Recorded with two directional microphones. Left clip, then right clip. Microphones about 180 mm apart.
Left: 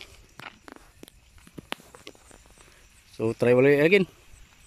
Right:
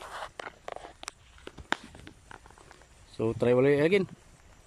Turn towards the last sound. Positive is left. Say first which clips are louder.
# left 5 dB
turn(degrees=5)  # may be behind; listen again after turning